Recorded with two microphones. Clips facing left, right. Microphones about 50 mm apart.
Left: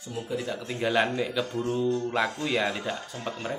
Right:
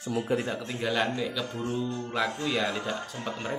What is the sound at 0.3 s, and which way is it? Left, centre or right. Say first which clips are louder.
Speech: right 3 dB; right.